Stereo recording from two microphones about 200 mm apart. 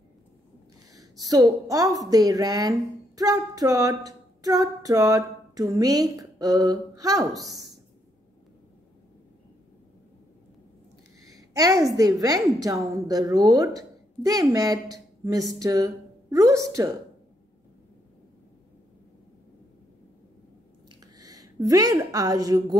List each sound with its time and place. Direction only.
0.9 s a woman's voice: 20° right (ahead or behind)
11.2 s speech: 15° right (ahead or behind)
21.0 s a woman's voice: 20° right (ahead or behind)